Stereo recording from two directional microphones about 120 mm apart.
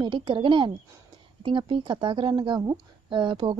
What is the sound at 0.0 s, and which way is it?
Speech, 40° right (ahead or behind).